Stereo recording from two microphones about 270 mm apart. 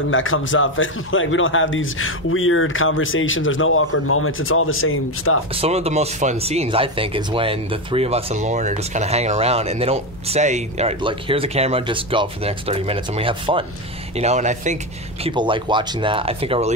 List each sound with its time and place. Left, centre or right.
0.1 s a man's voice: left
5.5 s speech: right